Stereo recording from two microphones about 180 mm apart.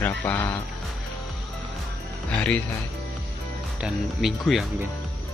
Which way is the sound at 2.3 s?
5° left (ahead or behind).